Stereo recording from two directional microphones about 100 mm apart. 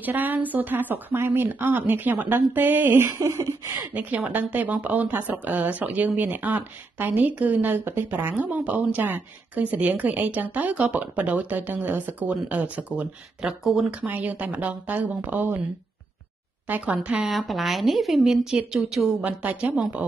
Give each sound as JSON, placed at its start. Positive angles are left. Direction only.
{"t": 0.0, "sound": "a woman's voice", "side_deg": -15}
{"t": 3.2, "sound": "a sound", "side_deg": -30}
{"t": 3.9, "sound": "speech", "side_deg": -15}
{"t": 16.6, "sound": "speech", "side_deg": -15}
{"t": 17.3, "sound": "a woman's voice", "side_deg": 0}